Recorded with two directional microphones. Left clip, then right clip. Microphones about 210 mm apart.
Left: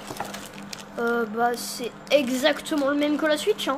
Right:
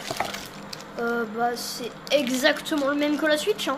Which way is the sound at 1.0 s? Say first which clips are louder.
Left 2 dB; 20° left (ahead or behind).